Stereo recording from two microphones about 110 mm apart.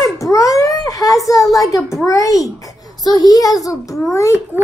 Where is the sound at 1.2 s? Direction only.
30° left (ahead or behind).